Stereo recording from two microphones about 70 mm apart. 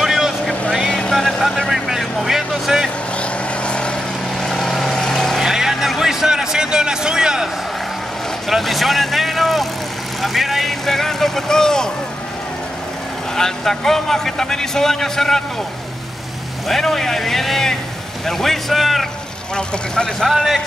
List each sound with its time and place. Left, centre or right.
0.0 s vehicle: centre
0.8 s vehicle: centre
3.2 s vehicle: centre
5.4 s vehicle: centre
8.5 s speech: centre
13.4 s speech: centre
16.6 s speech: centre
19.5 s speech: centre
20.2 s speech: centre